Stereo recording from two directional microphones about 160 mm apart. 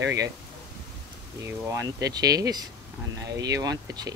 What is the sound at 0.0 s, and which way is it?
Speech, 90° right.